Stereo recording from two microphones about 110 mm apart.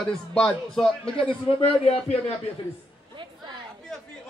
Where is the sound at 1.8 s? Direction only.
60° left (ahead or behind).